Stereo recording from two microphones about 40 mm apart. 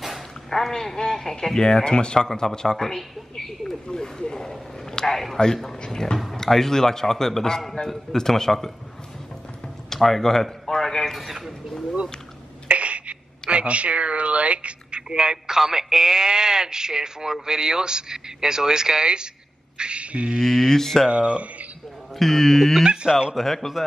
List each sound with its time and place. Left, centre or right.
0.5 s a man's voice: centre
2.1 s a man's voice: centre
3.8 s a man's voice: left
9.8 s speech: centre
11.1 s speech: centre
12.6 s speech: right
19.8 s beatboxing: right
20.4 s speech: centre
20.7 s a man's voice: centre
21.1 s speech: right
22.2 s speech: centre